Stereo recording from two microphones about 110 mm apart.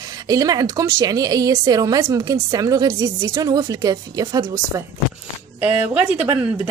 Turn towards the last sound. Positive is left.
turn(degrees=-20)  # may be behind; listen again after turning